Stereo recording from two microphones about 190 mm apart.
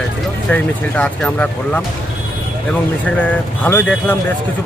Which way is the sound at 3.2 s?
10° left (ahead or behind).